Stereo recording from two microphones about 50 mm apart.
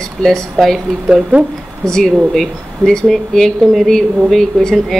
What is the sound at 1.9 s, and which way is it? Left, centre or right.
Speech, centre.